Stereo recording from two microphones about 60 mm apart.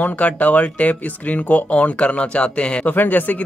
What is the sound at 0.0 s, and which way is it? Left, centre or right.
Speech, left.